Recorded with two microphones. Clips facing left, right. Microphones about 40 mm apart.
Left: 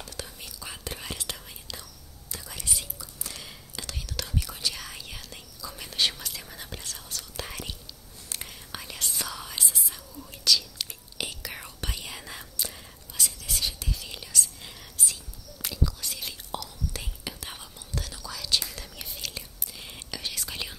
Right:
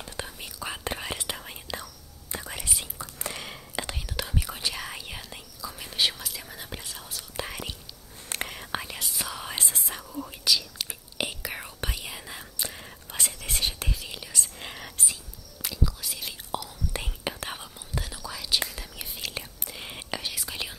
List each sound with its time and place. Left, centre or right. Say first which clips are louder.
0.0 s whispering: right 3 dB; right
1.7 s whispering: right 7 dB; centre
8.3 s whispering: right 7 dB; right
9.0 s whispering: even; centre
9.5 s whispering: right 1 dB; right
10.4 s whispering: left 1 dB; centre
12.5 s whispering: right 2 dB; centre
13.1 s whispering: right 1 dB; right
13.9 s whispering: left 1 dB; centre
14.4 s whispering: right 2 dB; right
15.6 s whispering: even; centre
16.9 s whispering: right 5 dB; right
17.5 s whispering: right 3 dB; centre
19.3 s whispering: right 4 dB; right; by 20.7 s centre